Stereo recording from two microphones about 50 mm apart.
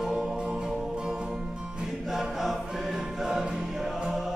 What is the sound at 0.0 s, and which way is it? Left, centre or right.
Music, centre.